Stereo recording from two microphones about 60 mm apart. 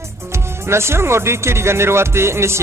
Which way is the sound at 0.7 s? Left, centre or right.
Right.